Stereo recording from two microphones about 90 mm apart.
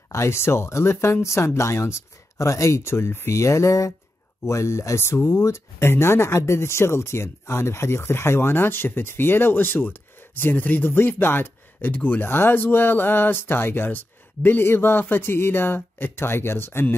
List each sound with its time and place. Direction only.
0.1 s speech: 30° left (ahead or behind)